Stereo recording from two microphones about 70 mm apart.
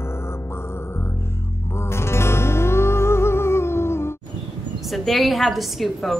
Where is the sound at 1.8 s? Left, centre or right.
Left.